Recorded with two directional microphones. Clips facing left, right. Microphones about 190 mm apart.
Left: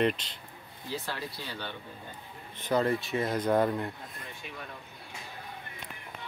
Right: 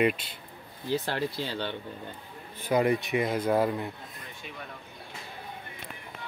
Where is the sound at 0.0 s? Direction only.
10° right (ahead or behind).